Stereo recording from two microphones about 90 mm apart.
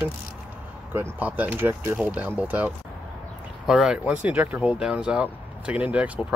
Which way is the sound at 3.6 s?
5° right (ahead or behind).